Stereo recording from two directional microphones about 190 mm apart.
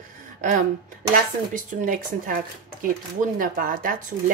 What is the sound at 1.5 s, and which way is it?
Speech, 45° right (ahead or behind).